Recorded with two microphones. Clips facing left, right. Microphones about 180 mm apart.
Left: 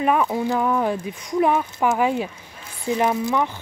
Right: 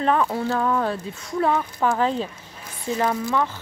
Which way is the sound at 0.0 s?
10° left (ahead or behind).